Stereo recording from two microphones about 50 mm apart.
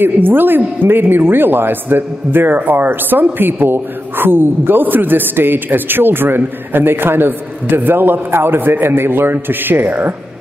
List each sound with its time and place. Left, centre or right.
0.0 s speech: right